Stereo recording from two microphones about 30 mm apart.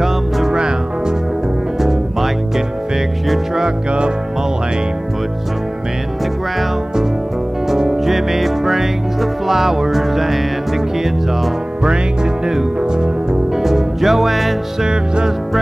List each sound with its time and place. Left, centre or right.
0.0 s music: centre
0.6 s music: right
1.8 s music: centre
7.6 s music: centre
12.8 s music: right
13.6 s music: centre
14.8 s music: right